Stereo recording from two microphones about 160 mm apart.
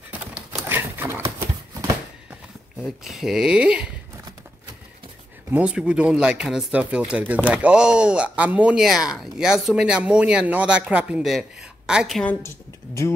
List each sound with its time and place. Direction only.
0.1 s horse: 10° right (ahead or behind)
2.8 s speech: centre (ahead or behind)
5.5 s speech: 5° right (ahead or behind)
12.3 s speech: 15° left (ahead or behind)